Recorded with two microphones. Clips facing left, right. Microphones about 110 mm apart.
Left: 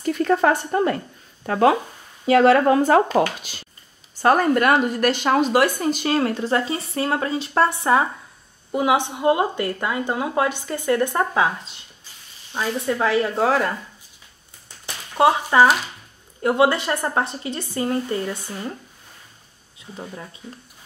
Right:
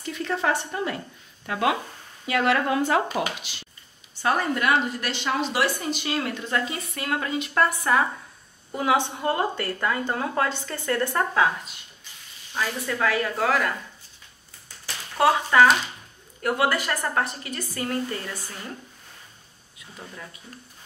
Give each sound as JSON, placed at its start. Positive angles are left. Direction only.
{"t": 0.0, "sound": "a woman's voice", "side_deg": 50}
{"t": 14.9, "sound": "a sound", "side_deg": 20}
{"t": 16.3, "sound": "a woman's voice", "side_deg": 25}
{"t": 19.8, "sound": "speech", "side_deg": 30}